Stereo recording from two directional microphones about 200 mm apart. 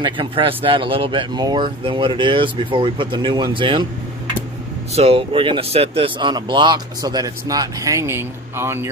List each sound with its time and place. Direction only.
0.0 s speech: 25° right (ahead or behind)
4.9 s speech: 30° right (ahead or behind); by 8.9 s 10° right (ahead or behind)